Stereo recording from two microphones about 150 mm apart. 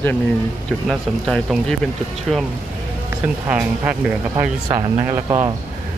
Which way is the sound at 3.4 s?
10° right (ahead or behind).